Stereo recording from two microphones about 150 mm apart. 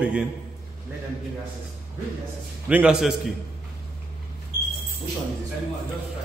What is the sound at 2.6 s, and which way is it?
Speech, 5° right (ahead or behind).